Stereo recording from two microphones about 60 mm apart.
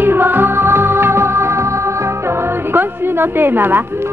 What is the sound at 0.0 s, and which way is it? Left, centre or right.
Music, right.